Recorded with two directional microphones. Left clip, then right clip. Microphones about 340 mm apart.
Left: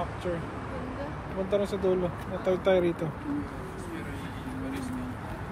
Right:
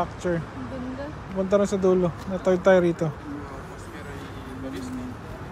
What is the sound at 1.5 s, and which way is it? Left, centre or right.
Speech, right.